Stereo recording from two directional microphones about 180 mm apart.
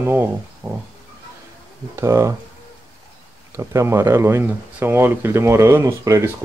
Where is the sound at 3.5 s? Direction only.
15° right (ahead or behind).